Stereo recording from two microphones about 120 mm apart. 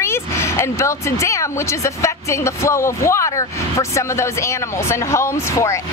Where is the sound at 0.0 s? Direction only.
20° left (ahead or behind).